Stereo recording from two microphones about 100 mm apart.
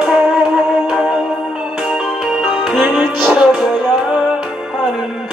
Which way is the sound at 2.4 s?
Centre (ahead or behind).